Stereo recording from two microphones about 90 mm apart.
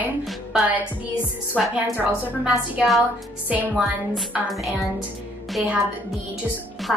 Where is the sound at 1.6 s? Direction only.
Centre (ahead or behind); by 3.7 s 20° right (ahead or behind).